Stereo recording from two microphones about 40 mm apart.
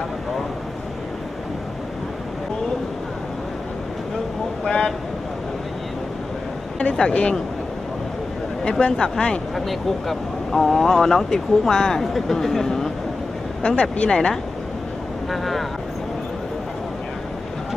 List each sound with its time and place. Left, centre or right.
4.6 s vehicle: centre
7.0 s speech: left
8.6 s speech: left
9.7 s speech: centre
13.6 s speech: left
15.3 s speech: centre